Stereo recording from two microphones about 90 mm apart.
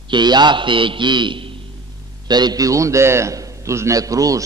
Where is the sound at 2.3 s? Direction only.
50° right (ahead or behind).